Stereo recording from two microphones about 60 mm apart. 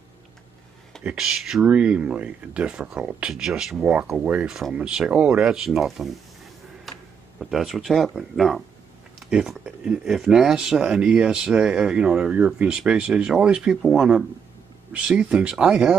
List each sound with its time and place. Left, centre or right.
1.0 s speech: centre
1.7 s speech: centre
3.8 s speech: right; by 6.1 s centre
6.9 s a sound: centre
8.2 s speech: centre